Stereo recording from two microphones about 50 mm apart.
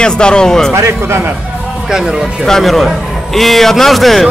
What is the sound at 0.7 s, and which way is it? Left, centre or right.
Speech, right.